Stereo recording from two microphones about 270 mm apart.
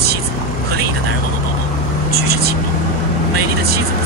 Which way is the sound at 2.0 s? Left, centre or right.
Right.